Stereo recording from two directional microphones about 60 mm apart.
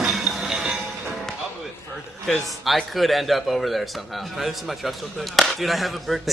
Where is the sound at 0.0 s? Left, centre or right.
Centre.